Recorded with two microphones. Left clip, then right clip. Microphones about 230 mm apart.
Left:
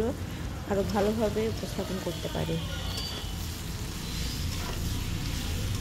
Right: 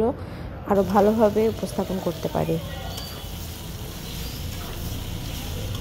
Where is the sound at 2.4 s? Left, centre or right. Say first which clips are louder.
Right 10 dB; centre.